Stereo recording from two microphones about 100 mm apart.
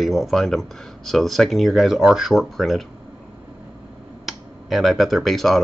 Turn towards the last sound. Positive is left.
turn(degrees=0)  # may be behind; listen again after turning